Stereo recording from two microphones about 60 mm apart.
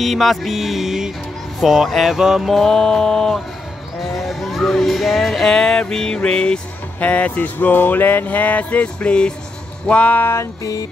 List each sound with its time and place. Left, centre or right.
0.0 s music: centre
2.5 s mantra: centre
4.0 s speech: centre
7.0 s a sound: left
10.2 s music: left
10.6 s music: left